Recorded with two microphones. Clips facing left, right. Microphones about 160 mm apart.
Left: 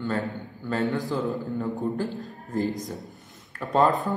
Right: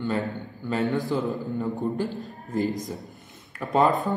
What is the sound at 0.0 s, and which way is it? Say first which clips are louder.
A man's voice: right 1 dB; 15° right (ahead or behind).